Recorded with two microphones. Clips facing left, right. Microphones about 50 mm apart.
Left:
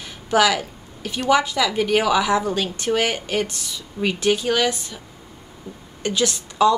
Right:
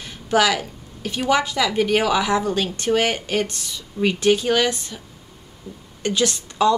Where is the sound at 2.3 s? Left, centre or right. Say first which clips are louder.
Even; centre.